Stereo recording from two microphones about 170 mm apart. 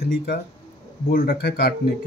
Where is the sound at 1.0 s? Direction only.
65° left (ahead or behind).